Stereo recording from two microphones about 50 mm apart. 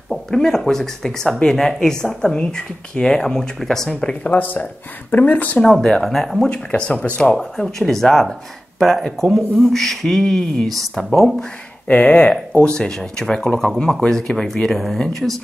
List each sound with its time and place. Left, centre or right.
0.3 s speech: centre
3.9 s speech: left
4.4 s speech: left
5.6 s speech: centre
6.0 s speech: centre
6.5 s speech: left
7.3 s speech: centre
11.9 s speech: left; by 15.4 s centre